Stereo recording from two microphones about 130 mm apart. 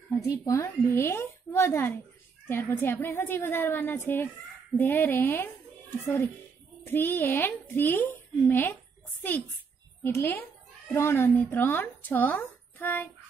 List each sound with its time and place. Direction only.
0.5 s a child's voice: 20° left (ahead or behind)
10.0 s speech: 15° left (ahead or behind)